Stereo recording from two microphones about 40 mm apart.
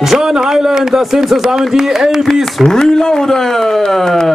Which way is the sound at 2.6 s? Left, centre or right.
Centre.